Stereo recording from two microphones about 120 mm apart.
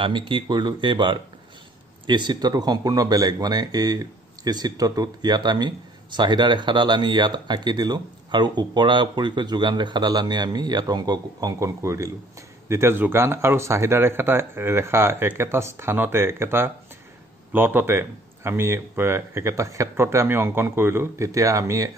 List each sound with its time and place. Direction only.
0.0 s speech: 45° right (ahead or behind); by 21.9 s 25° right (ahead or behind)